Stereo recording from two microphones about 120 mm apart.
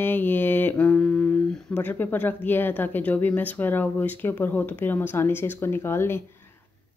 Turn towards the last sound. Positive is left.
turn(degrees=20)  # may be behind; listen again after turning